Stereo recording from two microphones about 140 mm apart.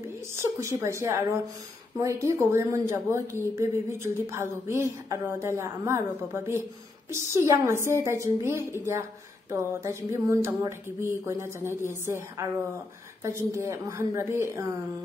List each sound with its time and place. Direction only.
0.3 s a woman's voice: 20° right (ahead or behind)